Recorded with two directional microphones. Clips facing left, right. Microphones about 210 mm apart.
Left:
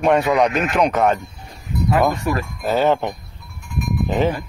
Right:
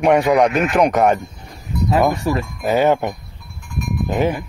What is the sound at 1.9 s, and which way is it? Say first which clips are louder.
Speech: right 1 dB; 25° right (ahead or behind).